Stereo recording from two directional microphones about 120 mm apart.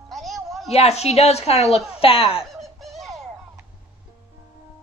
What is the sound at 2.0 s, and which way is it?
Speech, 50° left (ahead or behind).